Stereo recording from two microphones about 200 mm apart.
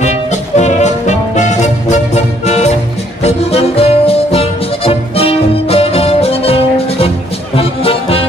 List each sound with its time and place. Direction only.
0.0 s music: 35° left (ahead or behind)